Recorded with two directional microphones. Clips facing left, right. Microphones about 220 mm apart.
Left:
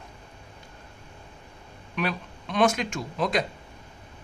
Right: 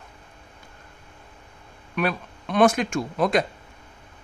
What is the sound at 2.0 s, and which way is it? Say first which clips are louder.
Speech: right 4 dB; 50° right (ahead or behind).